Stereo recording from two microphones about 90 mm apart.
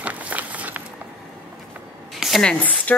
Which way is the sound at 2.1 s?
Centre (ahead or behind).